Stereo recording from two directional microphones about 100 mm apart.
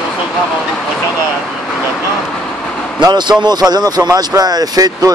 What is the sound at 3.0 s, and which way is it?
Speech, 45° right (ahead or behind).